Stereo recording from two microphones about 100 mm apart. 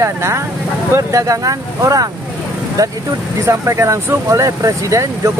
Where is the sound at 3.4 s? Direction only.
30° right (ahead or behind).